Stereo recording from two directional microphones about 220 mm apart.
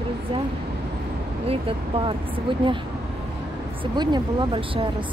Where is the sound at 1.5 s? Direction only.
25° right (ahead or behind).